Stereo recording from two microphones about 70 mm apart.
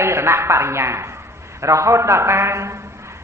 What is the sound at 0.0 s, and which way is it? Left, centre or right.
A man's voice, right.